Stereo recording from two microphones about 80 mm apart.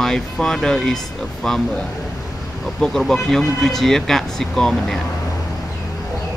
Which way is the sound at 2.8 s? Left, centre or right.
Centre.